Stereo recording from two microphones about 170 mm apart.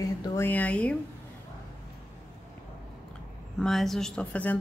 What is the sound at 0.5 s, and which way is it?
Speech, 10° left (ahead or behind).